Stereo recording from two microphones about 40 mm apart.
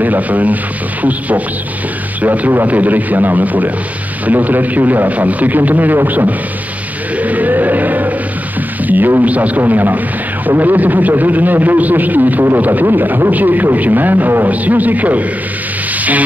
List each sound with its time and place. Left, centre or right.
0.0 s speech: right
2.2 s a man's voice: right
7.2 s music: right
9.2 s a man's voice: right
9.6 s a man's voice: right